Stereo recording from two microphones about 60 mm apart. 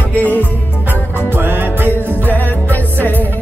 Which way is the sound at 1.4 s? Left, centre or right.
Right.